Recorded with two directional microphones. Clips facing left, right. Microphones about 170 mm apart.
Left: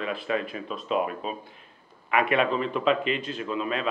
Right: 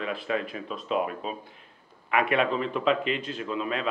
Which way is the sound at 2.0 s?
15° left (ahead or behind).